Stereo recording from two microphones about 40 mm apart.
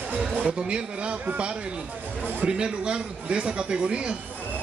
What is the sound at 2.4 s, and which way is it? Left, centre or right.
A man's voice, right.